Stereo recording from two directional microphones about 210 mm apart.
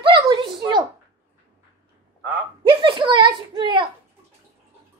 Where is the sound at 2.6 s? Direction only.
25° right (ahead or behind).